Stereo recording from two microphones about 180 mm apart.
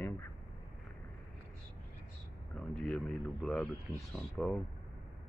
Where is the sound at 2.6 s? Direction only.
5° left (ahead or behind).